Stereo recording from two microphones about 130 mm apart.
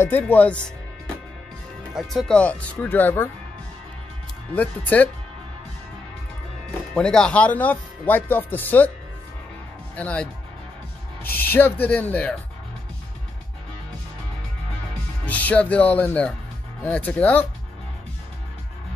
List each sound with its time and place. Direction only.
0.2 s speech: 10° left (ahead or behind)
2.0 s speech: centre (ahead or behind)
2.3 s speech: 10° left (ahead or behind)
4.6 s speech: 10° left (ahead or behind)
7.0 s speech: 5° left (ahead or behind)
9.9 s speech: 10° left (ahead or behind)
11.2 s speech: 15° left (ahead or behind)
15.2 s speech: 10° left (ahead or behind)